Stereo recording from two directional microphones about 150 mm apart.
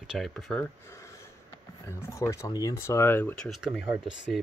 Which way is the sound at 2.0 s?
20° left (ahead or behind).